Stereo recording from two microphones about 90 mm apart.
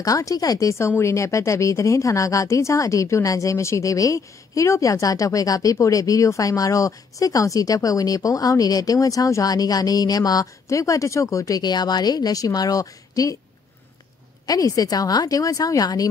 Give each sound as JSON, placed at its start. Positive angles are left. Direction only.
{"t": 0.0, "sound": "speech", "side_deg": 40}
{"t": 14.4, "sound": "a woman's voice", "side_deg": 45}